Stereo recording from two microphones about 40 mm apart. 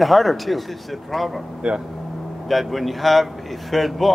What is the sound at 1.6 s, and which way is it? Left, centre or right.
Speech, centre.